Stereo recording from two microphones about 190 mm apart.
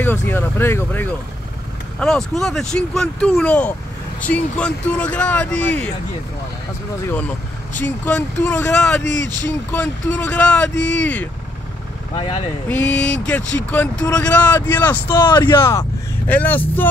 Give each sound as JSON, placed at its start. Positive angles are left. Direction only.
{"t": 0.0, "sound": "speech", "side_deg": 10}
{"t": 7.8, "sound": "speech", "side_deg": 10}
{"t": 12.6, "sound": "speech", "side_deg": 5}
{"t": 15.1, "sound": "speech", "side_deg": 25}